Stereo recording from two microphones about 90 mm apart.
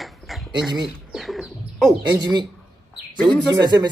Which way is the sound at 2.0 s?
55° right (ahead or behind).